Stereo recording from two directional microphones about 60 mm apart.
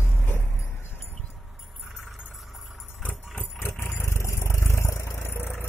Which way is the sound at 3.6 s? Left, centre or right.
Left.